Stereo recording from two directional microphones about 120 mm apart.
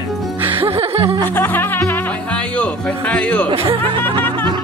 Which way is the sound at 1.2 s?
15° left (ahead or behind).